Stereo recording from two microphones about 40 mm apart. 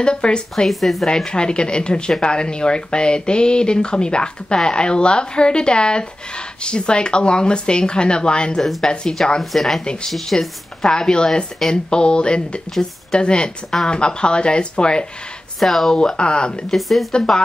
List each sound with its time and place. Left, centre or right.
0.0 s speech: left
0.7 s speech: centre
1.0 s speech: centre
9.4 s speech: centre
10.3 s a woman's voice: centre
15.6 s speech: centre
16.0 s speech: left
16.7 s speech: centre